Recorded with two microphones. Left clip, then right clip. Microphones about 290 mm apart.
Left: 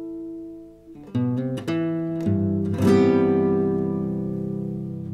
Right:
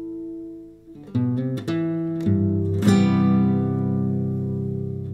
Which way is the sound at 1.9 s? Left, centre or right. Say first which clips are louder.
Right 1 dB; left.